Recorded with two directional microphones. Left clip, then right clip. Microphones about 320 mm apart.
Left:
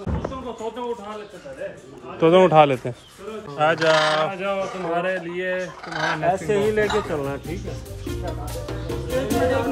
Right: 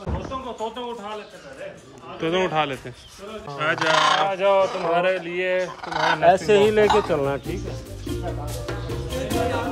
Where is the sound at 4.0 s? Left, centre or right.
Centre.